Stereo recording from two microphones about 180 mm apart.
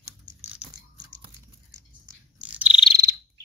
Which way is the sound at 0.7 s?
20° right (ahead or behind).